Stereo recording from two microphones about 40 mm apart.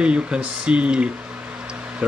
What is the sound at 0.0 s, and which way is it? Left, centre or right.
Speech, right.